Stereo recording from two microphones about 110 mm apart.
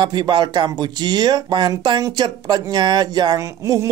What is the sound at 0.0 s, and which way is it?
Speech, 45° right (ahead or behind).